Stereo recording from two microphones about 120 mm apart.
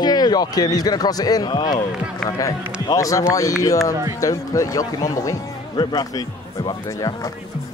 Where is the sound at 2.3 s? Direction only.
30° left (ahead or behind).